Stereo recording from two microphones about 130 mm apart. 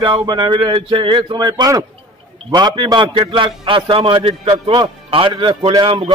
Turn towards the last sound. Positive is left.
turn(degrees=-45)  # may be behind; listen again after turning